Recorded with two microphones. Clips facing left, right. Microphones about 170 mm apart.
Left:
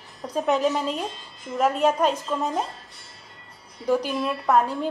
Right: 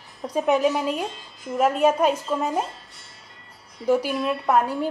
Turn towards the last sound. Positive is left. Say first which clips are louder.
# even
turn(degrees=-10)  # may be behind; listen again after turning